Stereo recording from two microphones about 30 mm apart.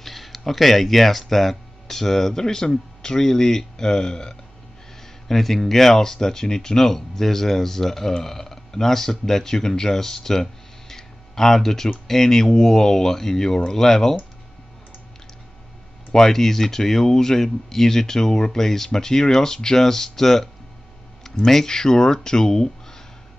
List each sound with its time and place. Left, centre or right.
0.0 s a sound: centre
0.5 s speech: centre; by 4.4 s left
5.3 s speech: centre
16.1 s speech: centre
21.6 s speech: left